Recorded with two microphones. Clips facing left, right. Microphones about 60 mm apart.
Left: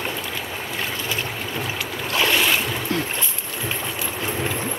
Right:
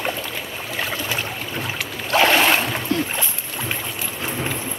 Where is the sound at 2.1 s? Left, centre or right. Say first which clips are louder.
Right 5 dB; right.